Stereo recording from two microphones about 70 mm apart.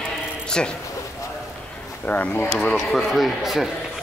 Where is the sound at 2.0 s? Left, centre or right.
Left.